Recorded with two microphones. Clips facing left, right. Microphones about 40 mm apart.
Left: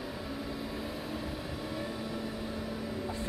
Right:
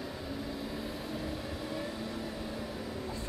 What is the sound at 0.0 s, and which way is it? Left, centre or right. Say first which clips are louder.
Vehicle: left 1 dB; centre.